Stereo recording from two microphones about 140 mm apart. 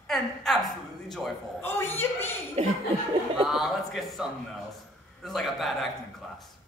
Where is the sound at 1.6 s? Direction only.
15° left (ahead or behind).